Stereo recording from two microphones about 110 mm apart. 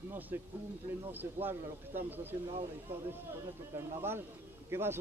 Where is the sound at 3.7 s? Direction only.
20° right (ahead or behind).